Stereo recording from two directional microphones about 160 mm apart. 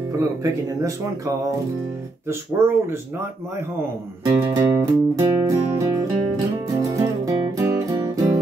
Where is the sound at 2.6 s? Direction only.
15° right (ahead or behind).